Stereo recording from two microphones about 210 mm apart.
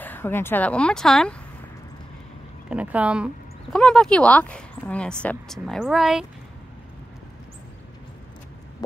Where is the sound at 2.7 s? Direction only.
5° right (ahead or behind).